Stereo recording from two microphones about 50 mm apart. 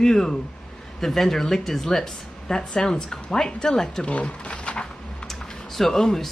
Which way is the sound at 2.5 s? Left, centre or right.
Centre.